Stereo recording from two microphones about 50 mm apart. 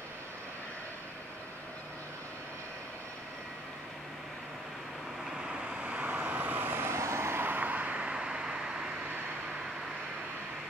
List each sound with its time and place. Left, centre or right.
5.7 s vehicle: right
6.9 s vehicle: right
7.4 s vehicle: right; by 8.8 s centre